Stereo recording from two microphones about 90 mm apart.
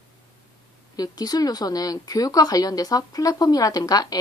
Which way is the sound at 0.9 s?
45° left (ahead or behind).